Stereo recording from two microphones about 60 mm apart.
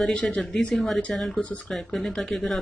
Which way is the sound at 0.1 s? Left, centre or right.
Centre.